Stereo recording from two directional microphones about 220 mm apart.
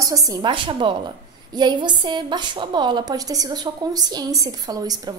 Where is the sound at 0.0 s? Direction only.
15° right (ahead or behind).